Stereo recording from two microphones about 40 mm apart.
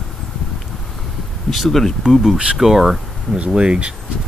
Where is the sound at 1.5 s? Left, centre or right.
Centre.